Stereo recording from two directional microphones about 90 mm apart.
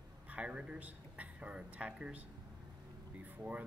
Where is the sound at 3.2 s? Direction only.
15° right (ahead or behind).